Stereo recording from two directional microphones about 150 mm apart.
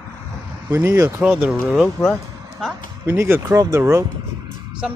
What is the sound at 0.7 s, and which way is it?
Speech, 15° right (ahead or behind).